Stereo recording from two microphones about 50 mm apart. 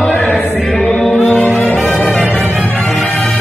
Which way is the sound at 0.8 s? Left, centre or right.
Centre.